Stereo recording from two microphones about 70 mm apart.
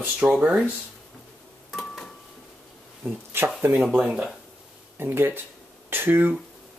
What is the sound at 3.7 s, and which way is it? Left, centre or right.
Speech, centre.